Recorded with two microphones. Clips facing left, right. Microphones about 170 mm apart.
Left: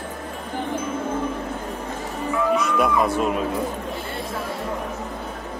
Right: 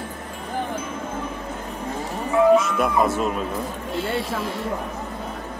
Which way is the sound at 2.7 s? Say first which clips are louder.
Even; centre (ahead or behind).